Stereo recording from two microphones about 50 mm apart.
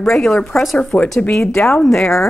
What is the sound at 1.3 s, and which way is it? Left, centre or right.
Speech, centre.